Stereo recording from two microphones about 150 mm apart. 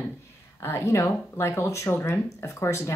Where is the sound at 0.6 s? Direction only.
20° left (ahead or behind).